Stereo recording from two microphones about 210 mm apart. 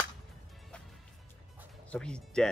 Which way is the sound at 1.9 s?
5° left (ahead or behind).